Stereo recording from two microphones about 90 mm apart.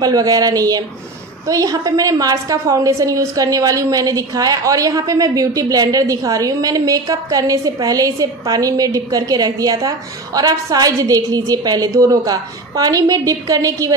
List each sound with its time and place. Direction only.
0.0 s a woman's voice: 45° right (ahead or behind)